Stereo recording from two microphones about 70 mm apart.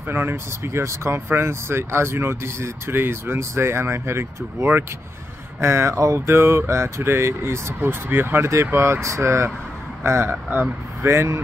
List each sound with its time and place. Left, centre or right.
0.0 s speech: right